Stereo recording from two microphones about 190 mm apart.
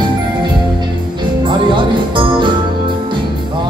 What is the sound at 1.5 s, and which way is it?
Music, 25° right (ahead or behind).